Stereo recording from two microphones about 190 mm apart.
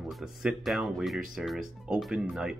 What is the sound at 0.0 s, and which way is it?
Speech, centre (ahead or behind).